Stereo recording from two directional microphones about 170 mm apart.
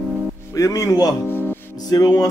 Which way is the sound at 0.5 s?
20° left (ahead or behind).